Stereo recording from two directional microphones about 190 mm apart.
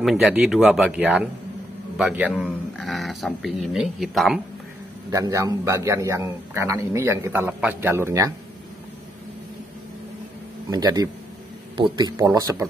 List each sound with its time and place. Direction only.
0.0 s speech: centre (ahead or behind)
5.1 s a man's voice: 15° right (ahead or behind)
10.7 s a man's voice: 20° right (ahead or behind)